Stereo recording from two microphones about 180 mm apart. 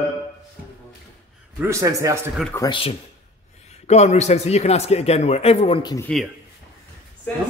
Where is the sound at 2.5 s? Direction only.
20° left (ahead or behind).